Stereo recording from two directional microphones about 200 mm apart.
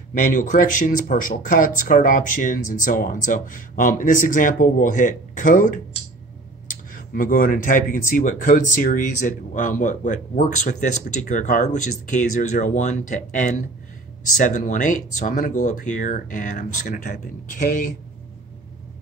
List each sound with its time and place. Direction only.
0.2 s speech: 40° left (ahead or behind)